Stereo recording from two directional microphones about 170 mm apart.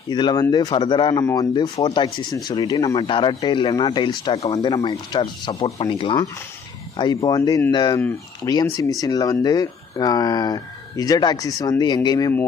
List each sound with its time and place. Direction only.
0.1 s speech: 25° left (ahead or behind)